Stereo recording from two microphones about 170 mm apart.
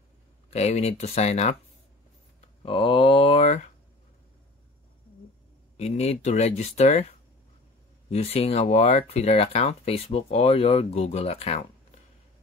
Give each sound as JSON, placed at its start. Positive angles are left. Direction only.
{"t": 0.5, "sound": "speech", "side_deg": 40}
{"t": 2.6, "sound": "a sound", "side_deg": 30}
{"t": 5.8, "sound": "speech", "side_deg": 40}
{"t": 8.1, "sound": "speech", "side_deg": 35}